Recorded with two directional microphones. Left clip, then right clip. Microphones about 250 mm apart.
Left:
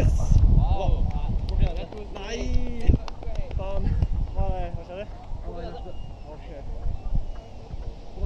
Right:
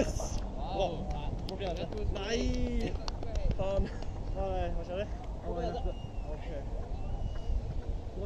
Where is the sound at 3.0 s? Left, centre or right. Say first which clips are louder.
Left 2 dB; left.